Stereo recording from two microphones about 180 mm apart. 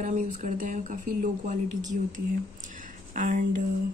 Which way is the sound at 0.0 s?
45° right (ahead or behind).